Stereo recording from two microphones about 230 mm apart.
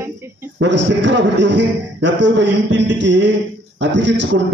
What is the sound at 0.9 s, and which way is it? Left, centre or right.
A man's voice, right.